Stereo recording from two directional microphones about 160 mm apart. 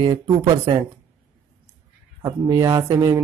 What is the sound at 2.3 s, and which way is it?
Speech, 20° right (ahead or behind).